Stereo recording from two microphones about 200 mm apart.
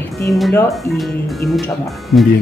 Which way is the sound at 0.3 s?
Centre (ahead or behind).